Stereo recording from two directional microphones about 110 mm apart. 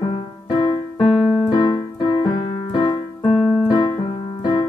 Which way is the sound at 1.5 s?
35° left (ahead or behind).